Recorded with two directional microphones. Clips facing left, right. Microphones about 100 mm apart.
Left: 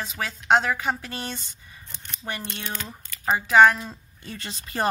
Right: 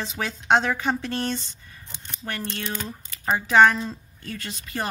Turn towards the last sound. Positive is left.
turn(degrees=30)  # may be behind; listen again after turning